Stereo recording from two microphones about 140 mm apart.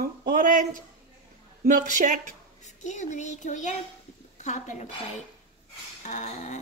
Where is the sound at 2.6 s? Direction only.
60° left (ahead or behind).